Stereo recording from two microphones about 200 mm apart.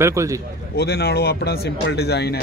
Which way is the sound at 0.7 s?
50° left (ahead or behind).